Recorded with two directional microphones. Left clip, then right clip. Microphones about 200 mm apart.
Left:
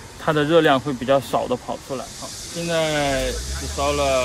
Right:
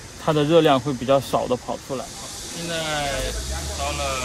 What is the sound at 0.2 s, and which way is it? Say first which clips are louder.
Speech: even; 10° right (ahead or behind).